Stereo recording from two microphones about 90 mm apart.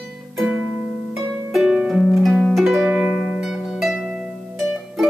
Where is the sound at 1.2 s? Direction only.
5° right (ahead or behind).